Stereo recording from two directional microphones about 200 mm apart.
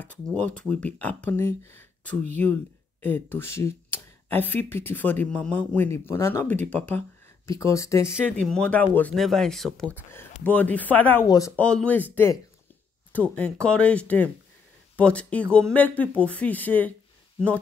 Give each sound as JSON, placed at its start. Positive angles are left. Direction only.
{"t": 0.0, "sound": "speech", "side_deg": 5}
{"t": 8.3, "sound": "speech", "side_deg": 5}
{"t": 11.5, "sound": "speech", "side_deg": 5}